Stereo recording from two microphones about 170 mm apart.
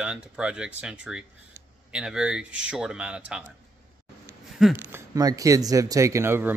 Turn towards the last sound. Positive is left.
turn(degrees=-15)  # may be behind; listen again after turning